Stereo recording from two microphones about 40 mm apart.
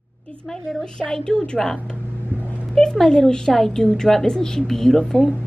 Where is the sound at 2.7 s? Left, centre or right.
Centre.